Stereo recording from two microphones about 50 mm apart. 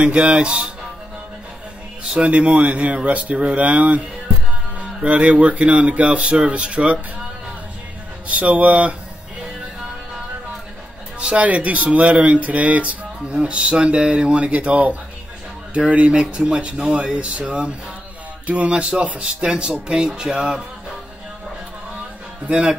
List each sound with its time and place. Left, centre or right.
0.0 s speech: right
2.1 s speech: right
8.3 s speech: right
11.1 s speech: right
22.5 s speech: right